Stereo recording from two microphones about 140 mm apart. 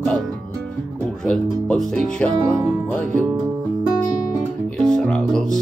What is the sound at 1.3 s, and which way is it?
Music, 5° left (ahead or behind).